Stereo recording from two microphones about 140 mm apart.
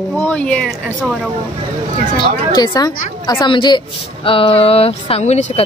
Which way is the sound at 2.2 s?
30° left (ahead or behind).